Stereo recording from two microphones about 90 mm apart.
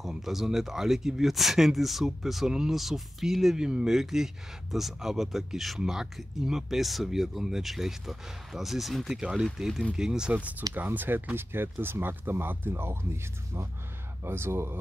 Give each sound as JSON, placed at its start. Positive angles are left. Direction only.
{"t": 0.0, "sound": "speech", "side_deg": -5}